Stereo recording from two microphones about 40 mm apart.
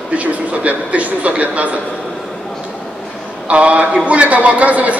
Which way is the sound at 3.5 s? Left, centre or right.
Right.